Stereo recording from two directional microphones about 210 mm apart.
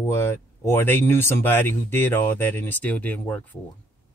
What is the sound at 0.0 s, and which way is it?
Speech, 10° left (ahead or behind).